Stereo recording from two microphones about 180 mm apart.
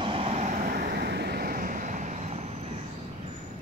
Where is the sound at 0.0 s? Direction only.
30° right (ahead or behind).